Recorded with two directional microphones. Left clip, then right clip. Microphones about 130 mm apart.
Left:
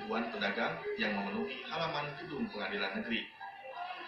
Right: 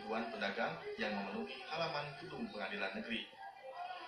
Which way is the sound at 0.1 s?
25° right (ahead or behind).